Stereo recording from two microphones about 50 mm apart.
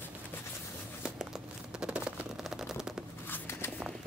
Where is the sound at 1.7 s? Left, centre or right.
Right.